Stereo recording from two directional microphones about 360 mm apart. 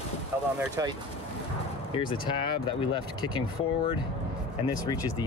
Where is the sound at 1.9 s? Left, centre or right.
Centre.